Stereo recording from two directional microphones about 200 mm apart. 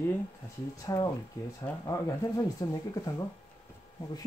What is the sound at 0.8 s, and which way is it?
Speech, 20° left (ahead or behind).